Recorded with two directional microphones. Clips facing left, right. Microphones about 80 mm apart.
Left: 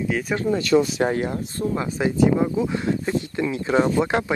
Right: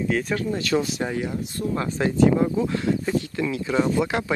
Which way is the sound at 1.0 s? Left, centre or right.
Left.